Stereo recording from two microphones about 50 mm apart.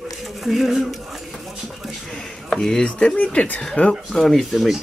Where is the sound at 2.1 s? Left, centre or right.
Centre.